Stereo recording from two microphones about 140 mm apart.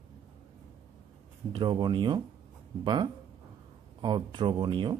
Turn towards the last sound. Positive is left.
turn(degrees=-35)  # may be behind; listen again after turning